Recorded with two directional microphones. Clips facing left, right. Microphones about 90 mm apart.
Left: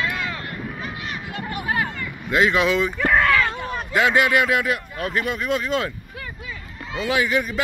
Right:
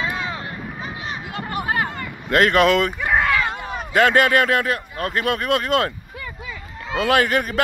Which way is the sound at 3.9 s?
50° right (ahead or behind).